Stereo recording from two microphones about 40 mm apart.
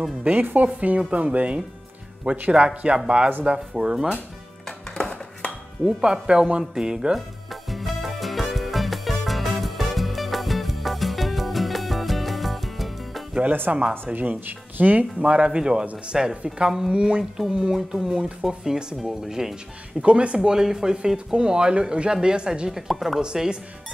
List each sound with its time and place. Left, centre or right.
0.4 s speech: right
0.7 s speech: right
4.9 s music: left
5.9 s speech: right
7.7 s music: centre
13.7 s speech: right
14.0 s speech: right
15.2 s speech: right
17.7 s speech: centre
18.1 s speech: right
20.0 s speech: right
22.7 s speech: centre
23.2 s speech: centre